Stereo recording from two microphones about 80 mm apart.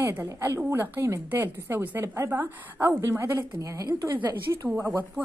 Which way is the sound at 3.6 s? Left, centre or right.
Right.